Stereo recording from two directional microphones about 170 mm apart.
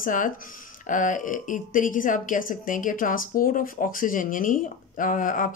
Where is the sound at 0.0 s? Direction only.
50° left (ahead or behind).